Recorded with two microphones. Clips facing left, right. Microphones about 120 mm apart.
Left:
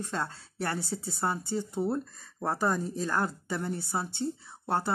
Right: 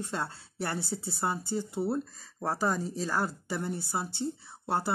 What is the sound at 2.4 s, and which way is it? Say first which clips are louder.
Speech: left 1 dB; centre (ahead or behind).